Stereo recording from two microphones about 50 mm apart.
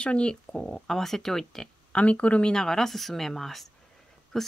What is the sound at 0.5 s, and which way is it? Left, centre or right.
Speech, centre.